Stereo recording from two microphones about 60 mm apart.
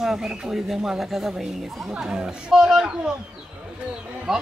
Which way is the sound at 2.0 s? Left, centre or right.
Centre.